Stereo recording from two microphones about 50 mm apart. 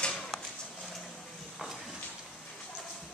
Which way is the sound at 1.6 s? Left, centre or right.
Centre.